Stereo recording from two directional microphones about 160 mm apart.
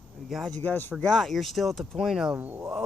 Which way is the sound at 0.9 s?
Centre (ahead or behind).